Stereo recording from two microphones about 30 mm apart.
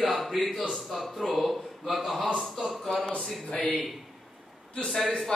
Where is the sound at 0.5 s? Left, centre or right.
Centre.